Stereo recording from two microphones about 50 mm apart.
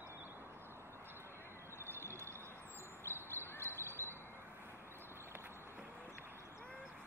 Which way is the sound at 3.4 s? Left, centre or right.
Left.